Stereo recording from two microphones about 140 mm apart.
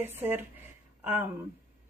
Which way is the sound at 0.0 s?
15° right (ahead or behind).